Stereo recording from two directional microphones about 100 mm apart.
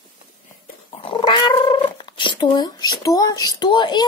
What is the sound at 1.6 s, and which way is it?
Speech, 55° left (ahead or behind).